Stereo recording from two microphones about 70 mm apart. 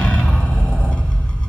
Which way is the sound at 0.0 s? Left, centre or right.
Centre.